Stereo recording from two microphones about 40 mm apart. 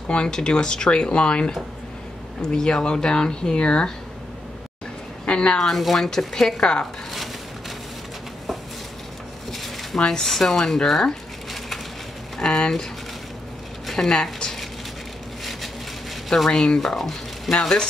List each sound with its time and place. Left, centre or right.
0.1 s speech: left
2.5 s speech: centre
5.2 s a woman's voice: left
5.6 s speech: centre
6.6 s speech: left
9.9 s speech: centre
12.4 s a sound: centre
14.0 s speech: centre
16.4 s speech: centre